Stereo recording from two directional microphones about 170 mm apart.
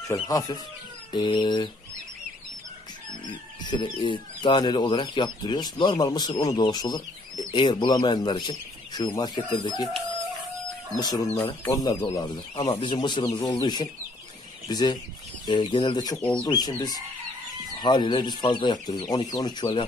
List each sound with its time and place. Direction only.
0.1 s speech: 20° left (ahead or behind)
3.3 s speech: 30° left (ahead or behind)
11.0 s speech: 25° left (ahead or behind)
16.2 s speech: 5° left (ahead or behind)
16.4 s speech: 25° left (ahead or behind)
17.7 s speech: 25° left (ahead or behind)